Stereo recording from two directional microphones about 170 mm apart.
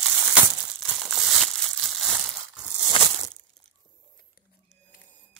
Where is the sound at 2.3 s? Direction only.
5° right (ahead or behind).